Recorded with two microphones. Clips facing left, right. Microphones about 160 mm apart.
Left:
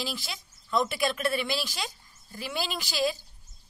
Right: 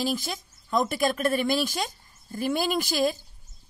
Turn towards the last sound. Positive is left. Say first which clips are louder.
# right 5 dB
turn(degrees=-50)  # may be behind; listen again after turning